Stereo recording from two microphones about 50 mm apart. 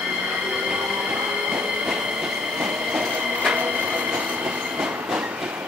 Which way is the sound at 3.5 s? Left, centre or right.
Right.